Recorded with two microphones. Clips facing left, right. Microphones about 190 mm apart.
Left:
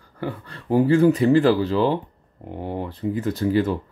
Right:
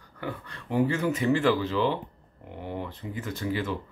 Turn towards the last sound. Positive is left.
turn(degrees=40)  # may be behind; listen again after turning